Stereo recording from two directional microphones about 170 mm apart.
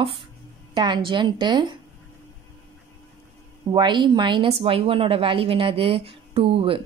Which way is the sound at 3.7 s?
25° right (ahead or behind).